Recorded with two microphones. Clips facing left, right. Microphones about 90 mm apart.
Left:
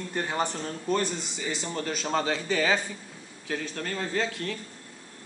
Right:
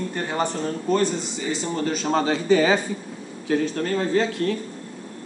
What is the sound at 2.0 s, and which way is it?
Speech, 20° right (ahead or behind).